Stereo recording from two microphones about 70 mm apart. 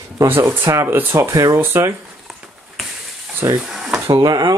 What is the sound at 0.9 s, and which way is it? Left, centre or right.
Speech, right.